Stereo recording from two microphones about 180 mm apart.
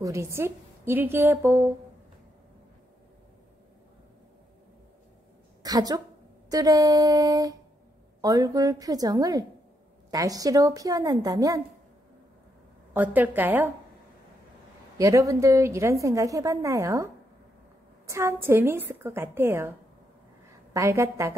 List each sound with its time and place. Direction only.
0.0 s a woman's voice: 15° right (ahead or behind)
5.6 s a woman's voice: 20° right (ahead or behind)
12.9 s a woman's voice: 10° right (ahead or behind)
15.0 s a woman's voice: 20° right (ahead or behind)
20.7 s a woman's voice: 15° right (ahead or behind)